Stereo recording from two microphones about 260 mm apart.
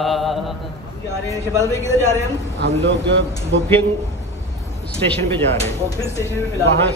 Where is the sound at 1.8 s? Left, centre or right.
Centre.